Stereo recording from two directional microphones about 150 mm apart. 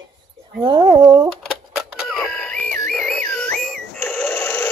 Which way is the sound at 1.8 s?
Centre (ahead or behind).